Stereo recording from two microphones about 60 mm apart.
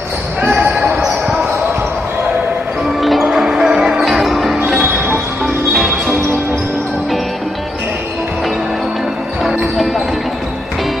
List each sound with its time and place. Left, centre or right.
0.4 s basketball bounce: right
1.2 s basketball bounce: centre
3.0 s music: centre
3.3 s music: centre
5.7 s music: centre
9.4 s basketball bounce: centre